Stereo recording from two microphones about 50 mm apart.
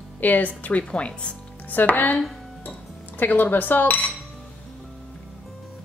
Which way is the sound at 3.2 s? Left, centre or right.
Left.